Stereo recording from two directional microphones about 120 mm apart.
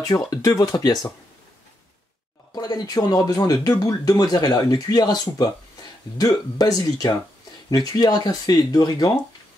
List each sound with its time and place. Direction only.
0.0 s speech: 30° left (ahead or behind)
2.5 s speech: 35° left (ahead or behind)